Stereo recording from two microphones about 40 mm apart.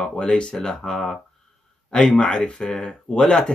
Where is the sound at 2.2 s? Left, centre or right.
Left.